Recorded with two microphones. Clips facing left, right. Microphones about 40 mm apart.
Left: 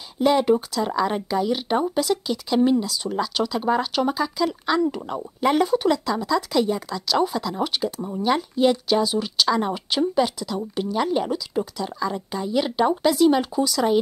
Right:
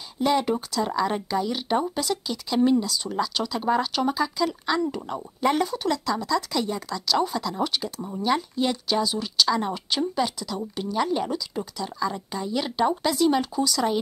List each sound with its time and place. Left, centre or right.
0.2 s speech: centre